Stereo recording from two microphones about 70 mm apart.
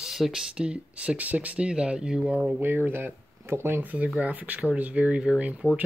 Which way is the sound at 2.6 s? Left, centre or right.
Right.